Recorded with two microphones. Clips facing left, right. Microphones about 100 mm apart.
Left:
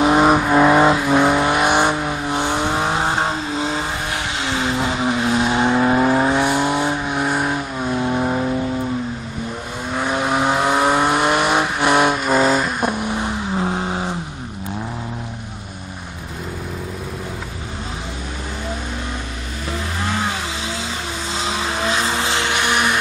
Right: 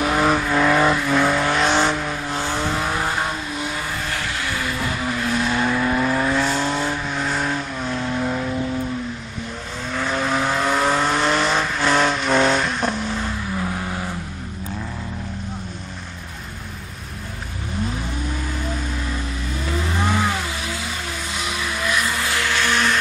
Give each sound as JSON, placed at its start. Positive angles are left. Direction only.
{"t": 0.0, "sound": "vehicle", "side_deg": 20}
{"t": 9.8, "sound": "vehicle", "side_deg": 15}
{"t": 21.4, "sound": "vehicle", "side_deg": 25}